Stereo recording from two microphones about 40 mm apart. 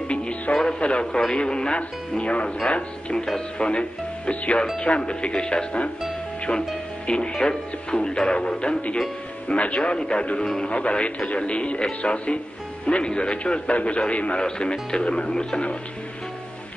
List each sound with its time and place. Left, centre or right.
0.1 s music: left
0.6 s a man's voice: left
7.1 s a man's voice: left